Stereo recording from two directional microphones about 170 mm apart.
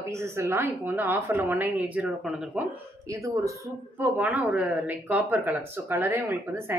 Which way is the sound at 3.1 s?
20° right (ahead or behind).